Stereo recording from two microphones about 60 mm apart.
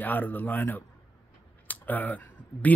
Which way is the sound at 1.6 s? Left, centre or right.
Left.